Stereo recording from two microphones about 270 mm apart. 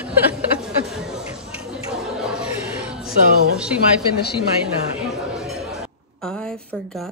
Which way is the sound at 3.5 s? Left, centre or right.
Centre.